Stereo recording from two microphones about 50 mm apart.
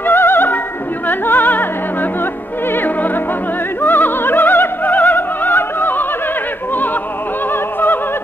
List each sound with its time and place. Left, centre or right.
0.0 s opera: left
1.0 s music: left
3.8 s opera: left